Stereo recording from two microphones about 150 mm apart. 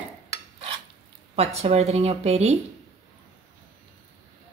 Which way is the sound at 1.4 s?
45° right (ahead or behind).